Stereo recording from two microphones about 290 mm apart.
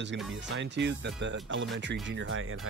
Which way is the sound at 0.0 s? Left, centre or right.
Right.